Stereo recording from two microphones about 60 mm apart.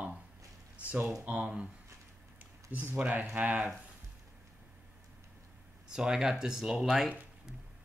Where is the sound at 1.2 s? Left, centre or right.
Right.